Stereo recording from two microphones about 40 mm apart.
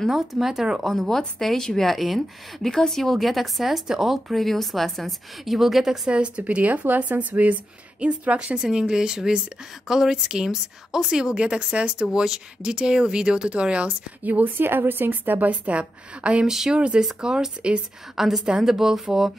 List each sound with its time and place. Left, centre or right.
0.1 s speech: centre
0.8 s a woman's voice: centre
3.8 s speech: centre
4.3 s a woman's voice: centre
6.0 s speech: right
8.6 s speech: centre
14.2 s speech: right
14.6 s a woman's voice: right
15.5 s speech: right
16.4 s speech: centre
16.7 s speech: right
18.1 s speech: centre